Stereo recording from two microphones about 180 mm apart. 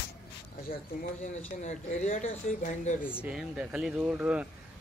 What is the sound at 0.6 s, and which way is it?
Speech, 50° left (ahead or behind).